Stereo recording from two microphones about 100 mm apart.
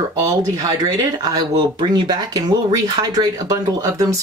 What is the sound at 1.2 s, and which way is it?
Speech, 45° right (ahead or behind).